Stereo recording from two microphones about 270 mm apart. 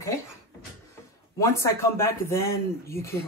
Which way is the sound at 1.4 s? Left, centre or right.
Centre.